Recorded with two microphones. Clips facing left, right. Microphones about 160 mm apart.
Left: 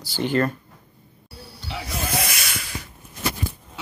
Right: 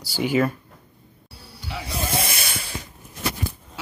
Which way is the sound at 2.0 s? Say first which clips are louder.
Even; 25° right (ahead or behind).